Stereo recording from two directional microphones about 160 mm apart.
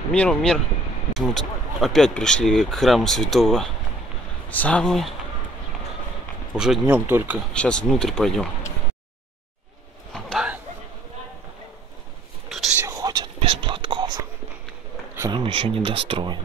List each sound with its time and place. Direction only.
0.1 s speech: 5° left (ahead or behind)
6.5 s speech: 5° right (ahead or behind)
7.3 s speech: 5° left (ahead or behind)
10.1 s a sound: centre (ahead or behind)
12.4 s whispering: centre (ahead or behind)
12.7 s whispering: 20° right (ahead or behind)
15.1 s speech: 20° right (ahead or behind)
15.4 s speech: 35° right (ahead or behind)